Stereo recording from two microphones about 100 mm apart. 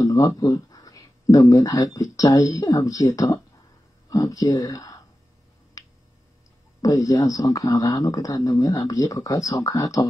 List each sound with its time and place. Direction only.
0.0 s a sound: 35° left (ahead or behind)
2.0 s speech: 35° left (ahead or behind)
6.8 s speech: 35° left (ahead or behind)